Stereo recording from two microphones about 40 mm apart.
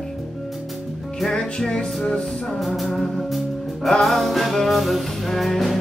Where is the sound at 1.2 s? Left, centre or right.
Centre.